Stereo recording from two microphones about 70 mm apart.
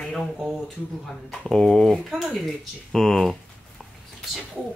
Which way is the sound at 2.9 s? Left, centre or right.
Centre.